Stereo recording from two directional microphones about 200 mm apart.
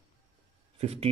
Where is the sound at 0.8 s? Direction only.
30° right (ahead or behind).